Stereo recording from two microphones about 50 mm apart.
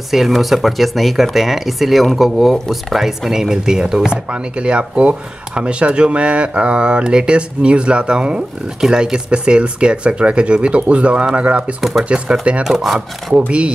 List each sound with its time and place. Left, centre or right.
0.1 s speech: centre; by 12.6 s right
12.6 s speech: centre